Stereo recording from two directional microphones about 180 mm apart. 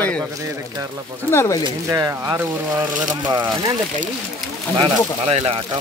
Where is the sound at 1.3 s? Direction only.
15° left (ahead or behind).